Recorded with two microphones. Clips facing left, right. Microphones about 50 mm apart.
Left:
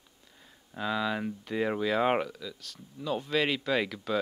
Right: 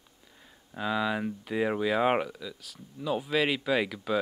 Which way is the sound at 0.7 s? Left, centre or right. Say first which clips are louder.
Right 1 dB; centre.